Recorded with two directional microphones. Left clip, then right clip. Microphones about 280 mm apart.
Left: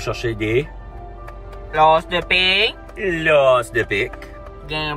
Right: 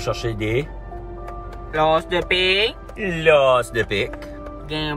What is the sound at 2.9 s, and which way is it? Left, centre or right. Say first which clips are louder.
Speech: even; centre.